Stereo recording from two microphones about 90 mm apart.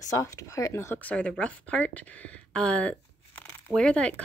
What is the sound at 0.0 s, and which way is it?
Speech, 40° left (ahead or behind).